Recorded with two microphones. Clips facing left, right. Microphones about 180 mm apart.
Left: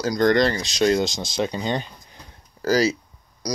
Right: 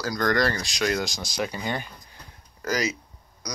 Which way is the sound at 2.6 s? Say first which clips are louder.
Left 7 dB; 30° left (ahead or behind).